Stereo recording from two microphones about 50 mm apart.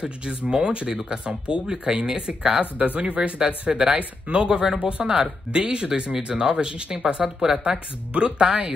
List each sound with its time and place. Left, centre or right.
0.0 s speech: centre
2.8 s speech: right